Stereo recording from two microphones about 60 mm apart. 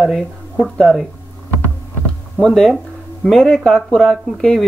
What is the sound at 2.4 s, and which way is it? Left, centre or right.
Speech, centre.